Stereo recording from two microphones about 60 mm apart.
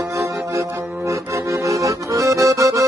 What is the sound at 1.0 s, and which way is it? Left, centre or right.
Accordion, right.